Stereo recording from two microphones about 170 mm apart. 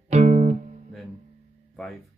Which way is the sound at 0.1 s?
40° right (ahead or behind).